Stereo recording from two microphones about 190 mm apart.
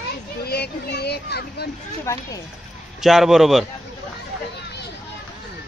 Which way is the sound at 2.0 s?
15° left (ahead or behind).